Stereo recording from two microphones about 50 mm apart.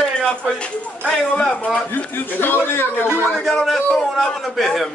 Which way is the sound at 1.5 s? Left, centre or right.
Left.